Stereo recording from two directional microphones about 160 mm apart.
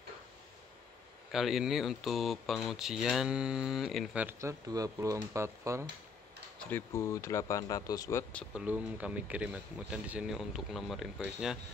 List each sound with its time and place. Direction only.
1.3 s speech: centre (ahead or behind); by 5.9 s 20° right (ahead or behind)
6.6 s speech: 15° left (ahead or behind)
8.5 s speech: 10° right (ahead or behind)